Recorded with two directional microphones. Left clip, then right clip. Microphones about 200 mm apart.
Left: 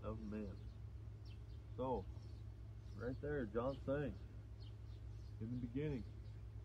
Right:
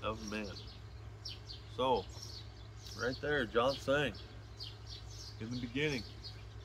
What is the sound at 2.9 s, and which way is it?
Speech, 20° right (ahead or behind).